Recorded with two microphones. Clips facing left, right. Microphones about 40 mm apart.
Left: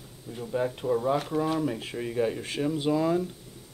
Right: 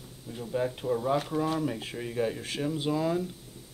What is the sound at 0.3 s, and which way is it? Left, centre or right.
Speech, centre.